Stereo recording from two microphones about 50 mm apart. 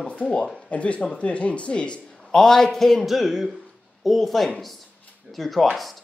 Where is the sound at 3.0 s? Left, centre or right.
Centre.